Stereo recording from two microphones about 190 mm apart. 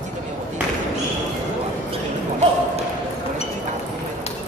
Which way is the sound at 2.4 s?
35° right (ahead or behind).